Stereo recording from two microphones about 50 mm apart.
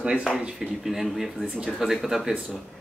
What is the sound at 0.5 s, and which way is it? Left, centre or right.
Speech, centre.